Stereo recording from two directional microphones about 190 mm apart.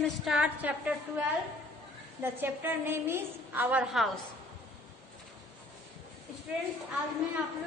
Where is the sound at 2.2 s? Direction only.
10° right (ahead or behind).